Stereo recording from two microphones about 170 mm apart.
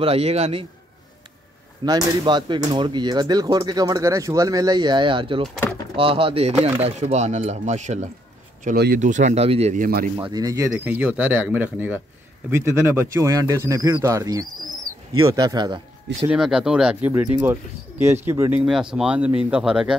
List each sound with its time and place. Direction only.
0.0 s speech: 35° right (ahead or behind)
1.9 s speech: 25° right (ahead or behind); by 8.1 s 45° right (ahead or behind)
8.7 s speech: 70° right (ahead or behind)
9.0 s speech: 45° right (ahead or behind)
9.8 s speech: 65° right (ahead or behind)
10.1 s speech: 20° right (ahead or behind)
16.3 s speech: 5° right (ahead or behind)